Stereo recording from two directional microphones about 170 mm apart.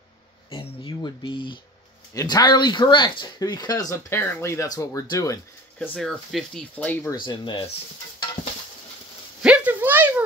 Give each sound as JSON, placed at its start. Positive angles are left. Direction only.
{"t": 0.8, "sound": "speech", "side_deg": 30}
{"t": 5.8, "sound": "speech", "side_deg": 5}
{"t": 7.2, "sound": "speech", "side_deg": 30}
{"t": 9.4, "sound": "a sound", "side_deg": -5}